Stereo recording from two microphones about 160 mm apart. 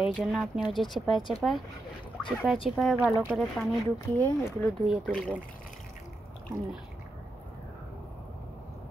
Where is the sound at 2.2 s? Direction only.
5° left (ahead or behind).